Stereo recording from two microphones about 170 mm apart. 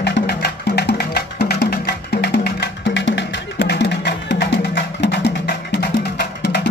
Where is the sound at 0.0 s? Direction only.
75° left (ahead or behind).